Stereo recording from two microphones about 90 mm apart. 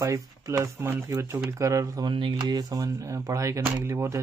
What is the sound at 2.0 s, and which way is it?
Speech, 60° right (ahead or behind).